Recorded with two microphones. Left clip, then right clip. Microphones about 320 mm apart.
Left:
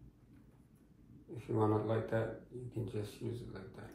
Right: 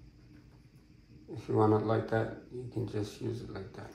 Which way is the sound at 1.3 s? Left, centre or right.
Right.